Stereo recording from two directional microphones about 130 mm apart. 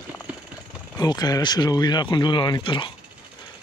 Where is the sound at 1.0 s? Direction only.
30° left (ahead or behind).